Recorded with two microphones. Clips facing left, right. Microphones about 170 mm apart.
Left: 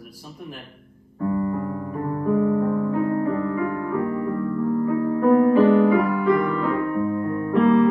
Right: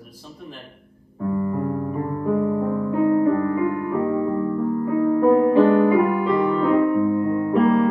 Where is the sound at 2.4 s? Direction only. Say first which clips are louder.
Left 3 dB; 15° right (ahead or behind).